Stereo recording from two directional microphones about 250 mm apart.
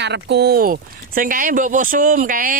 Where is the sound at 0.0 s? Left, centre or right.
Right.